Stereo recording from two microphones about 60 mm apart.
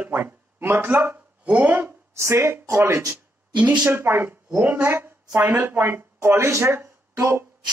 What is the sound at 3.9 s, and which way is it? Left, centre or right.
Speech, right.